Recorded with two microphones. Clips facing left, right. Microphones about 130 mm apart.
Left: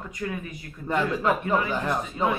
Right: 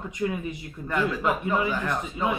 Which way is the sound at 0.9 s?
25° left (ahead or behind).